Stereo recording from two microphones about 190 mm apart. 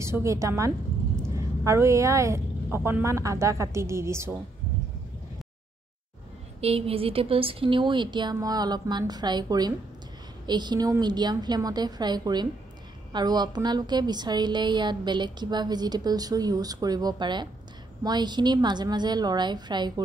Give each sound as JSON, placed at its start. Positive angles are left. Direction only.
{"t": 0.0, "sound": "a woman's voice", "side_deg": -15}
{"t": 6.6, "sound": "a woman's voice", "side_deg": -30}